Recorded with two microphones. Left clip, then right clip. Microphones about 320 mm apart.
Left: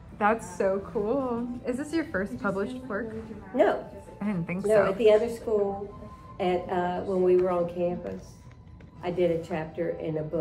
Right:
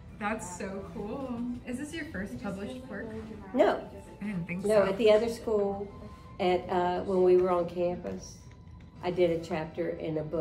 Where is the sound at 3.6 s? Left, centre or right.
Centre.